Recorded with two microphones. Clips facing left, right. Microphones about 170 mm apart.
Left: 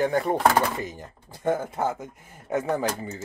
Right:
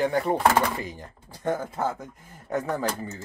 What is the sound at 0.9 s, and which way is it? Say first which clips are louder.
Speech: even; 20° left (ahead or behind).